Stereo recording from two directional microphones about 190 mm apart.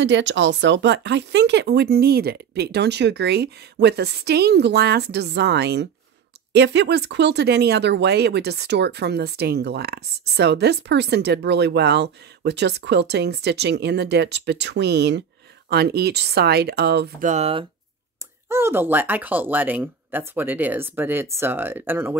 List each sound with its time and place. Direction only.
0.0 s speech: 70° right (ahead or behind)
17.3 s speech: 30° right (ahead or behind)
18.5 s speech: 10° right (ahead or behind)